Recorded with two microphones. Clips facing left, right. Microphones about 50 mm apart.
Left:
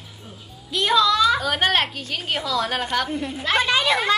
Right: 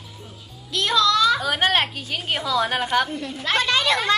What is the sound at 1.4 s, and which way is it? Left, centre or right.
A woman's voice, centre.